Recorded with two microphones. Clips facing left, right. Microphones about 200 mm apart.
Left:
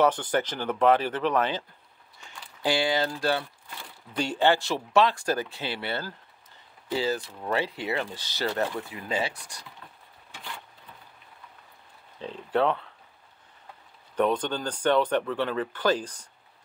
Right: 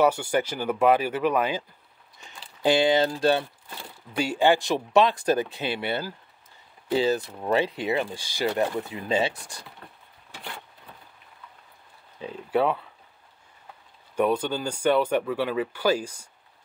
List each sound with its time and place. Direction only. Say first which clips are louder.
0.0 s speech: right 2 dB; 10° right (ahead or behind)
4.2 s speech: right 2 dB; 10° right (ahead or behind); by 9.7 s 25° right (ahead or behind)
12.2 s speech: right 1 dB; 10° right (ahead or behind)
14.1 s speech: right 1 dB; 10° right (ahead or behind)